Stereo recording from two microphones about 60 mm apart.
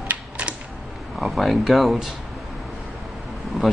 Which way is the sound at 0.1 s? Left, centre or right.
Right.